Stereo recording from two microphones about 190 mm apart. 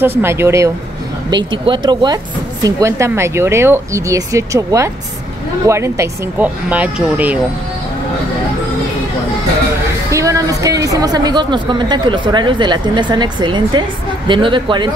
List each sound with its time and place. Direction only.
0.2 s a woman's voice: 15° right (ahead or behind)
1.3 s a woman's voice: 25° right (ahead or behind); by 7.3 s 10° right (ahead or behind)
10.1 s a woman's voice: 15° right (ahead or behind)